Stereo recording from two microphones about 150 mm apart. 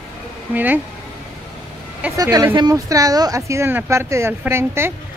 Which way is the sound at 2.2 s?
25° right (ahead or behind).